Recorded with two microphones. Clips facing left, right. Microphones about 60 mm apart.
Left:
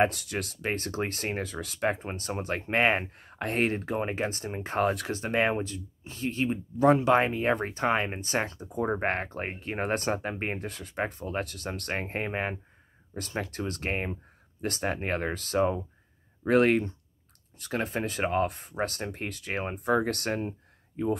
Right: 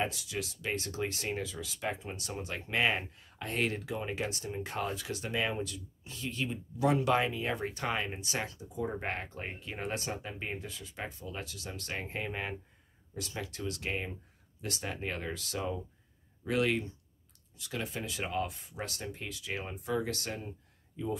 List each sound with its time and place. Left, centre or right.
0.0 s speech: left
4.8 s speech: left
5.1 s speech: left
5.6 s speech: left